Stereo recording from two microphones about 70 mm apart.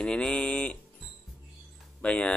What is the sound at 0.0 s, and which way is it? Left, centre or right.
Speech, centre.